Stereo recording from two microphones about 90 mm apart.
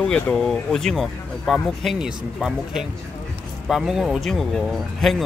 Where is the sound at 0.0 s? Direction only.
5° left (ahead or behind).